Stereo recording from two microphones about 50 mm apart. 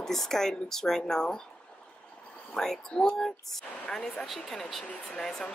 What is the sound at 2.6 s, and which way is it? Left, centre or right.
Speech, centre.